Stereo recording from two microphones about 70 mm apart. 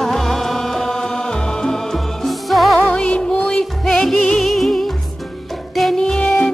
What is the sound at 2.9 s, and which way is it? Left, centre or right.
Music, centre.